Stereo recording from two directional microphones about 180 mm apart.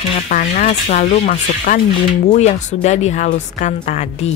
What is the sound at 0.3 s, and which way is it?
A woman's voice, 45° left (ahead or behind).